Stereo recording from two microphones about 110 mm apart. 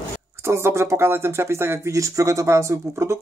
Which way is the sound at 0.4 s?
25° right (ahead or behind).